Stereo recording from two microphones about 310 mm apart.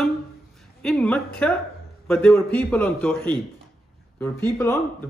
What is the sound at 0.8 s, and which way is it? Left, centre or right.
A man's voice, centre.